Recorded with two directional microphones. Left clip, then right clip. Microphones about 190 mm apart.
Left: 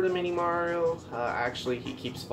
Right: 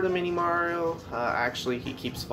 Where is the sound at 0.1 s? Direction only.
25° right (ahead or behind).